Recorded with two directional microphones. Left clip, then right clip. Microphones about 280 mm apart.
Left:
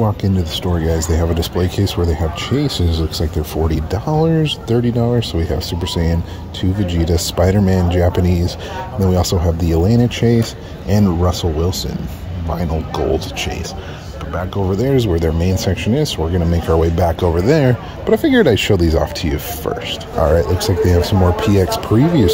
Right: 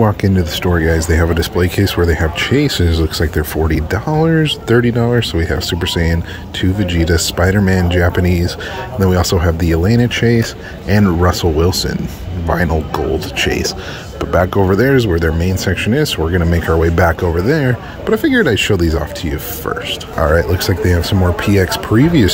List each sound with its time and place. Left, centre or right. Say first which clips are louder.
0.0 s speech: right 5 dB; centre
14.9 s speech: right 3 dB; centre